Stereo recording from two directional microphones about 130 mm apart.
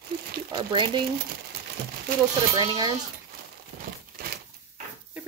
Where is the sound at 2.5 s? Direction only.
30° right (ahead or behind).